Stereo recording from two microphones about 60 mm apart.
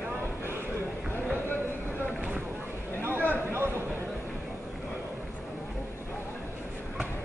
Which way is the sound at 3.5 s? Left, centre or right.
Right.